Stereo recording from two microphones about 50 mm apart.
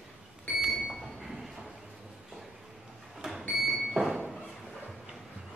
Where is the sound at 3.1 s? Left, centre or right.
Centre.